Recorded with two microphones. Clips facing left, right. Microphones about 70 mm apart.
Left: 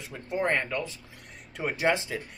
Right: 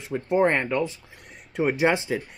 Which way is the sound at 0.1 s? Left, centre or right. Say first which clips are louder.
Right 7 dB; right.